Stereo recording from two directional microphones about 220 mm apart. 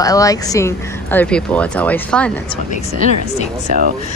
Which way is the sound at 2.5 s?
30° left (ahead or behind).